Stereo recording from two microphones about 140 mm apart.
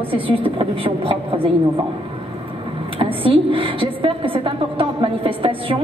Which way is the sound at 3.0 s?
40° right (ahead or behind).